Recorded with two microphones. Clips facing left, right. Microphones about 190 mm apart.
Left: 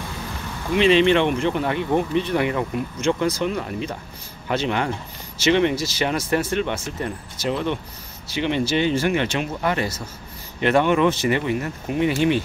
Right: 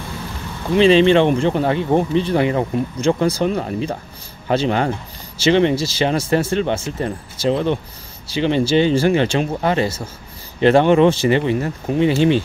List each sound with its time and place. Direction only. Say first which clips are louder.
0.7 s speech: right 4 dB; 30° right (ahead or behind)